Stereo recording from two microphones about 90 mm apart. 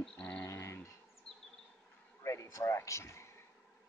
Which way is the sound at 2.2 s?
35° left (ahead or behind).